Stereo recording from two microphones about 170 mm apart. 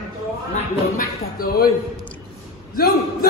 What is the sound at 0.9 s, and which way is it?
Speech, 60° left (ahead or behind).